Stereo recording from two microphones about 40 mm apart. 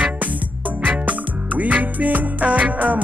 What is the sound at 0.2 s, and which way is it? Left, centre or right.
Music, right.